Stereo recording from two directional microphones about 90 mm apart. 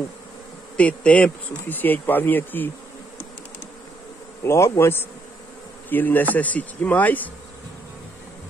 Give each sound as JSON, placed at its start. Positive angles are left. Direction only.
{"t": 0.7, "sound": "speech", "side_deg": 15}
{"t": 4.4, "sound": "speech", "side_deg": 30}
{"t": 5.9, "sound": "bee", "side_deg": 20}
{"t": 6.3, "sound": "speech", "side_deg": 15}